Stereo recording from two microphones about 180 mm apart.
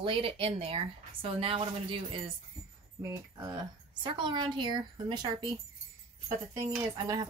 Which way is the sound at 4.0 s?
25° right (ahead or behind).